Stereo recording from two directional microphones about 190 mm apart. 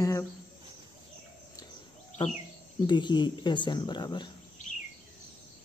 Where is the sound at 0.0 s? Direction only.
15° left (ahead or behind).